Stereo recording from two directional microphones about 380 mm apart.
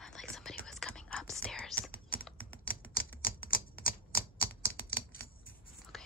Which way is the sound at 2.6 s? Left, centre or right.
Left.